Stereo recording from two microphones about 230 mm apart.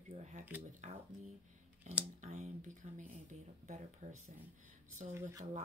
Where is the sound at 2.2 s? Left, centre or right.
Right.